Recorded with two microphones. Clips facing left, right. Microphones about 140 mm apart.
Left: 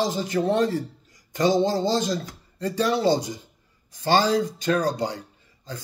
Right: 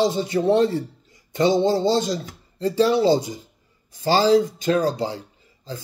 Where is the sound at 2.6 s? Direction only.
30° right (ahead or behind).